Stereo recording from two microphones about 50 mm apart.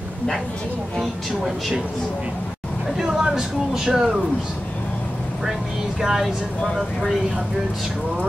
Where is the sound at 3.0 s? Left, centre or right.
Centre.